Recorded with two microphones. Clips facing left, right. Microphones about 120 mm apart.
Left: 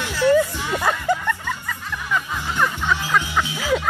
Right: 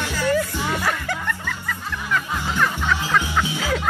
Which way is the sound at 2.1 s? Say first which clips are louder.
Even; 15° left (ahead or behind).